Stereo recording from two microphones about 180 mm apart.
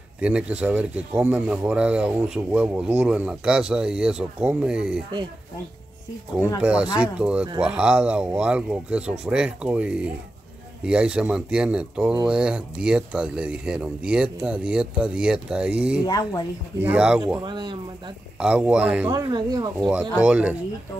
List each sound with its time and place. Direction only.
0.2 s a man's voice: 5° right (ahead or behind)
6.6 s a man's voice: 5° right (ahead or behind)
16.1 s speech: 20° left (ahead or behind)
16.8 s speech: 5° right (ahead or behind)
17.4 s speech: 25° right (ahead or behind)
18.4 s speech: 5° right (ahead or behind)
19.2 s speech: 25° right (ahead or behind)
19.9 s a man's voice: 5° right (ahead or behind)